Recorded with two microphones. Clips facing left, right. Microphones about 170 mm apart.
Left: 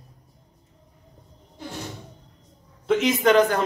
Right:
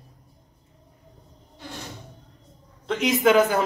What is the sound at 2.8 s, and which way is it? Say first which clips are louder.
Speech: left 1 dB; centre (ahead or behind).